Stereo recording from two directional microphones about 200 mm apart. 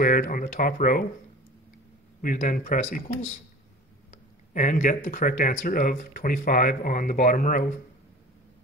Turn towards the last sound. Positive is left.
turn(degrees=40)  # may be behind; listen again after turning